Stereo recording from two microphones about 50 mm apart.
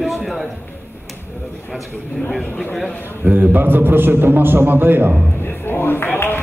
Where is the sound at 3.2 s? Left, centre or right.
Right.